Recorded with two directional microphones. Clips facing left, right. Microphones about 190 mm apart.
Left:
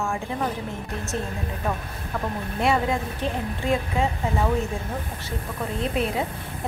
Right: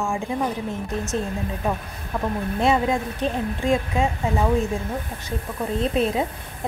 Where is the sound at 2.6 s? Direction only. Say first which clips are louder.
Right 2 dB; 20° right (ahead or behind).